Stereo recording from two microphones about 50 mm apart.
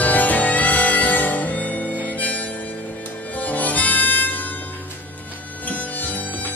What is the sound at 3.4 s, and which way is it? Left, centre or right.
Harmonica, left.